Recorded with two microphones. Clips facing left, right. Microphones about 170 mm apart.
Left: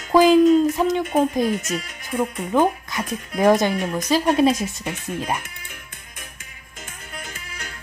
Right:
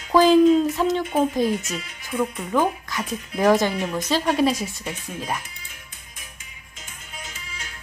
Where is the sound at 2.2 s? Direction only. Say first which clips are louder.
Left 3 dB; 20° left (ahead or behind).